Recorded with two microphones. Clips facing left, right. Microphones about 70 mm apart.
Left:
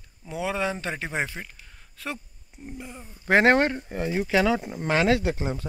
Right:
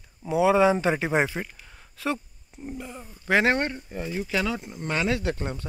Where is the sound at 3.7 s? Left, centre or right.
Left.